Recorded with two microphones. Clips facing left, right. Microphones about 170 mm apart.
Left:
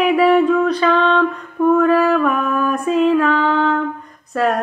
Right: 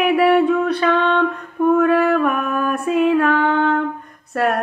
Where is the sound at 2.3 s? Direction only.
50° right (ahead or behind).